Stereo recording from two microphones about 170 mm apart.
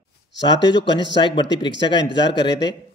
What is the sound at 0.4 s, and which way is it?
A man's voice, 25° left (ahead or behind).